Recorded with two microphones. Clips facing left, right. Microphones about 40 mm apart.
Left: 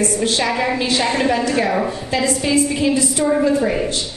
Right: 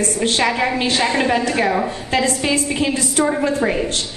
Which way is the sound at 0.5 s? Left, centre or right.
Centre.